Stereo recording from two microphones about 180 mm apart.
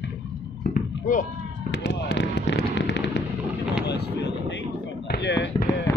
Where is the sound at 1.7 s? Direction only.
75° left (ahead or behind).